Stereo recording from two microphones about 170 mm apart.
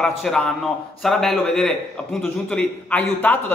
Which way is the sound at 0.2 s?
5° left (ahead or behind).